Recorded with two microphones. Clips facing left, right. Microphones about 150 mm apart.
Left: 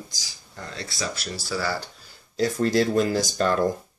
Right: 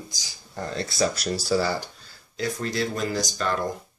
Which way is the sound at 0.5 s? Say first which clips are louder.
Right 7 dB; 40° right (ahead or behind).